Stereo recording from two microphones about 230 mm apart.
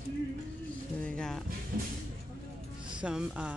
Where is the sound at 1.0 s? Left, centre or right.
Centre.